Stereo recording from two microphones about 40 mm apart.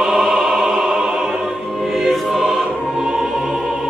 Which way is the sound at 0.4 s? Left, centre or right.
Centre.